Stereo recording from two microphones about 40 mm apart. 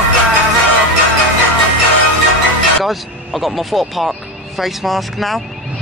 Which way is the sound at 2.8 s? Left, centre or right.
Centre.